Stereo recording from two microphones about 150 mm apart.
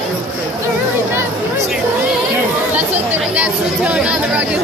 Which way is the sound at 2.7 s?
10° right (ahead or behind).